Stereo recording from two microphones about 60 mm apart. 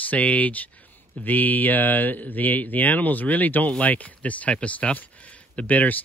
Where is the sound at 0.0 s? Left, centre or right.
Left.